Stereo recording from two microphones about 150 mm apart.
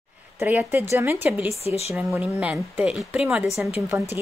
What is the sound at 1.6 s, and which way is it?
Speech, 45° left (ahead or behind).